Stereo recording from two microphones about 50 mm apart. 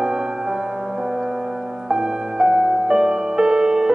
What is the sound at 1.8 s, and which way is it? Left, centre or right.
Music, centre.